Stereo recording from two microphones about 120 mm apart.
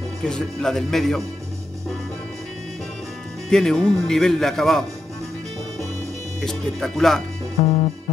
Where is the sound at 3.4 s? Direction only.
5° left (ahead or behind).